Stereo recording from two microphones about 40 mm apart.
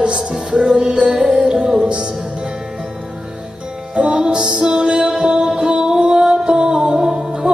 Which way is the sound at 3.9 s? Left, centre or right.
Right.